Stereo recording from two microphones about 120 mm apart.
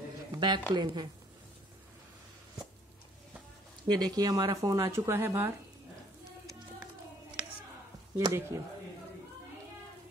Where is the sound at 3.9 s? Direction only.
35° right (ahead or behind).